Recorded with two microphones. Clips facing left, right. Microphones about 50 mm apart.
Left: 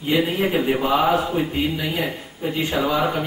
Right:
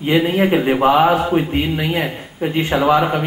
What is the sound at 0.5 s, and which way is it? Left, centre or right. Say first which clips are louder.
Speech: right 6 dB; right.